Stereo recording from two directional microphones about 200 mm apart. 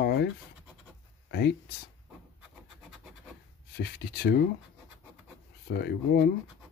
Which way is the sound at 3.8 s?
50° left (ahead or behind).